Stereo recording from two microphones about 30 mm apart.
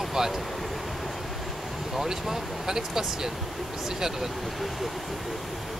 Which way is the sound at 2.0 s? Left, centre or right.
Centre.